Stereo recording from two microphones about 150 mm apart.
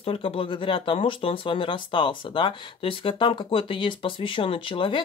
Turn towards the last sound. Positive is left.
turn(degrees=35)  # may be behind; listen again after turning